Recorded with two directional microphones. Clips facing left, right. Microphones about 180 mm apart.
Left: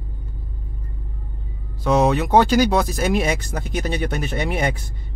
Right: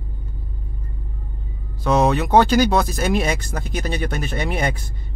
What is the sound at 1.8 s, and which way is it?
Speech, 10° left (ahead or behind).